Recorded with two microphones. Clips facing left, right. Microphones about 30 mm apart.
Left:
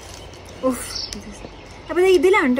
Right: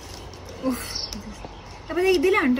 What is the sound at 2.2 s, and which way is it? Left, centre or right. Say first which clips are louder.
Speech: left 5 dB; left.